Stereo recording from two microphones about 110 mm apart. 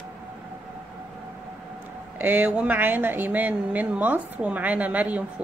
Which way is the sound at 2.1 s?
15° right (ahead or behind).